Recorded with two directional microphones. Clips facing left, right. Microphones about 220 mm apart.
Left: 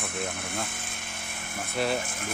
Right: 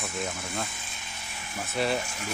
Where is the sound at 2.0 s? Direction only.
50° left (ahead or behind).